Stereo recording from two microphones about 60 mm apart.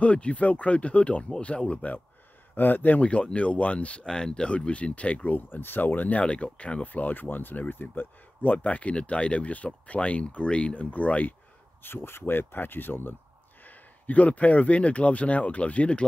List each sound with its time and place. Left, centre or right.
0.0 s speech: left
5.3 s speech: left
11.8 s speech: left